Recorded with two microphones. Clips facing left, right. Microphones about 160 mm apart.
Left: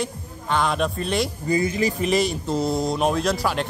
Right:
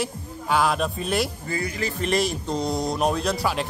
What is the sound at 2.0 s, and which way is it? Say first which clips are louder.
A man's voice: left 2 dB; centre (ahead or behind).